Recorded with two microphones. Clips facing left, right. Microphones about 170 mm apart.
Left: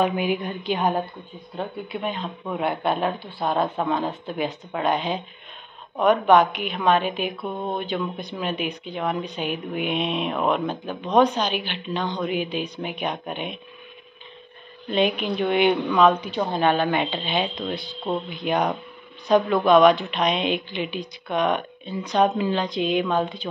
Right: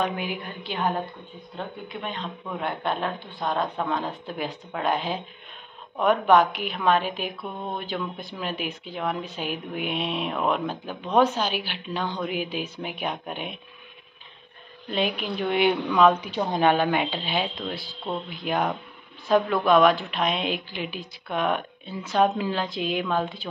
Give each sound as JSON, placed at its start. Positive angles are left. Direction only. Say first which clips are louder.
{"t": 0.0, "sound": "speech", "louder": "left 6 dB", "side_deg": 15}
{"t": 14.9, "sound": "speech", "louder": "left 5 dB", "side_deg": 0}